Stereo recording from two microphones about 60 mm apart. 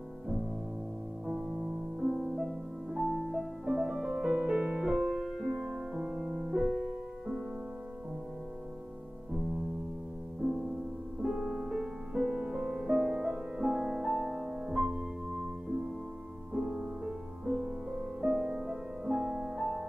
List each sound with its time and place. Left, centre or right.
1.2 s music: centre
11.2 s music: centre
16.5 s music: centre